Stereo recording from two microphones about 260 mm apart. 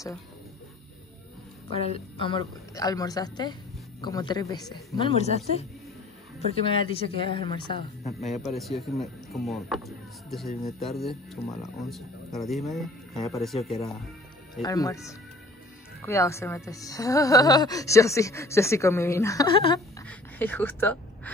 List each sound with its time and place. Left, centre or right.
1.7 s speech: left
8.1 s speech: centre
11.4 s speech: left
11.8 s speech: centre
14.6 s speech: centre
20.1 s a sound: centre